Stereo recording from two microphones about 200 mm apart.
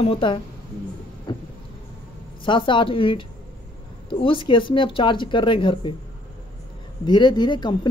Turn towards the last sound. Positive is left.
turn(degrees=20)  # may be behind; listen again after turning